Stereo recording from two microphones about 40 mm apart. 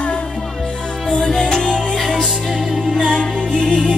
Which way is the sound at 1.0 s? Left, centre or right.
Centre.